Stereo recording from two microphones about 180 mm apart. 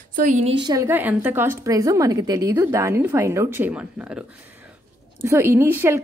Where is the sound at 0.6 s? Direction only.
15° right (ahead or behind).